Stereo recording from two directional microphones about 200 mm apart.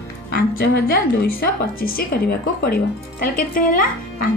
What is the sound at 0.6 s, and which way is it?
Speech, 50° left (ahead or behind).